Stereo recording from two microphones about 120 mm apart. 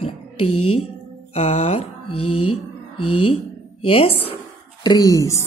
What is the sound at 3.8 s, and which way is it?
Speech, 50° left (ahead or behind).